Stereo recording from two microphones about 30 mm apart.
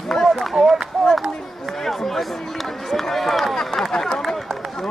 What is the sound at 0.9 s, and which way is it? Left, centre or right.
Run, centre.